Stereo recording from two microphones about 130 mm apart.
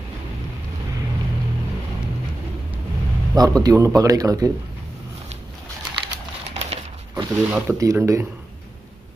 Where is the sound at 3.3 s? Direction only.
30° right (ahead or behind).